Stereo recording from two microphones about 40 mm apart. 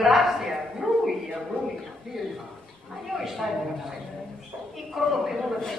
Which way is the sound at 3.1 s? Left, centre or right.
Centre.